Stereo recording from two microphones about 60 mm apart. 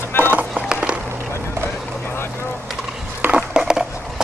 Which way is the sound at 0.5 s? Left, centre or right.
Centre.